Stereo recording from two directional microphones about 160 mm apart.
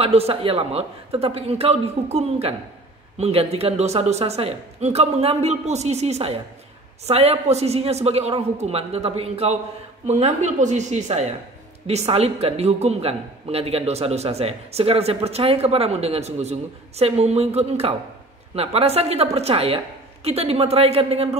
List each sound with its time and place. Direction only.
0.0 s a man's voice: 40° right (ahead or behind)